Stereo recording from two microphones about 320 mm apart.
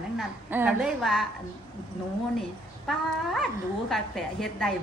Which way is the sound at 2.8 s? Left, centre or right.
Centre.